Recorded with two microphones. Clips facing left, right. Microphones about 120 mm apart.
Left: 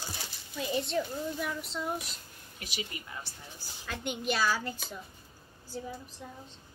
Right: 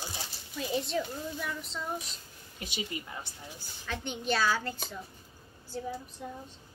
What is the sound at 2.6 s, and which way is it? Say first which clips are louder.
Speech: right 3 dB; 25° right (ahead or behind).